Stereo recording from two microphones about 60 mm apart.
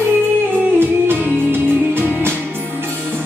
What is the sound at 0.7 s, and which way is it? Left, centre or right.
Music, right.